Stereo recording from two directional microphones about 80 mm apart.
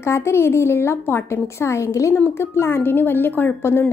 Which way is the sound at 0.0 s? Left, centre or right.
Left.